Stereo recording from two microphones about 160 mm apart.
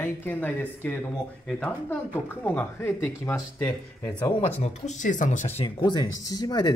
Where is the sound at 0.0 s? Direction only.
15° left (ahead or behind).